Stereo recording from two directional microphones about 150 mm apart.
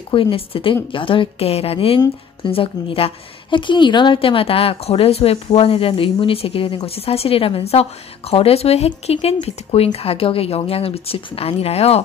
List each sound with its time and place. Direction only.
0.1 s speech: 35° left (ahead or behind)